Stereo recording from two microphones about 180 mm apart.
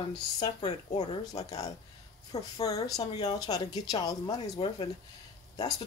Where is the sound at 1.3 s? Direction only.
20° left (ahead or behind).